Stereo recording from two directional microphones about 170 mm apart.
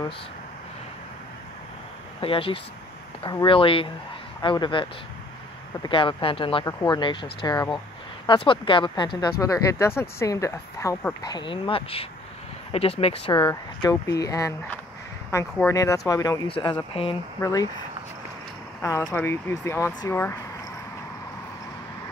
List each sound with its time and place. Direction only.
2.1 s speech: 35° left (ahead or behind)
16.4 s speech: 30° left (ahead or behind)
17.4 s speech: 20° left (ahead or behind)
18.8 s speech: 15° left (ahead or behind)